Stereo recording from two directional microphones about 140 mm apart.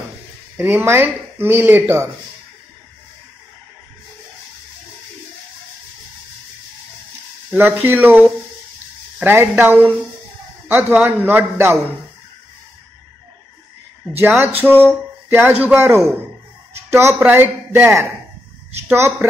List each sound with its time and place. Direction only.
0.6 s speech: 15° right (ahead or behind)
7.5 s speech: 15° right (ahead or behind)
14.2 s a woman's voice: 20° right (ahead or behind)